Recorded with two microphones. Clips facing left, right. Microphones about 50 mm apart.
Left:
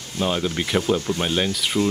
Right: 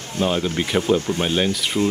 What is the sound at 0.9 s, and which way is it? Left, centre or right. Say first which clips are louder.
Speech: right 3 dB; right.